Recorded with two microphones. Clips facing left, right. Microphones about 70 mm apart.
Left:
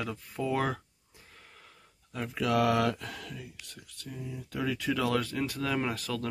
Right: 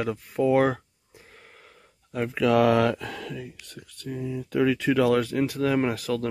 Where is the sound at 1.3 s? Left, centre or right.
Right.